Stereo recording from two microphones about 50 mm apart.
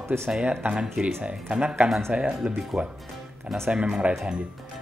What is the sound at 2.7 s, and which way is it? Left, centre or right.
Speech, centre.